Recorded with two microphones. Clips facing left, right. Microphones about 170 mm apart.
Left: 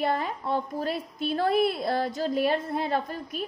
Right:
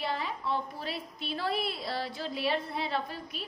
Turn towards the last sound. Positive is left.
turn(degrees=50)  # may be behind; listen again after turning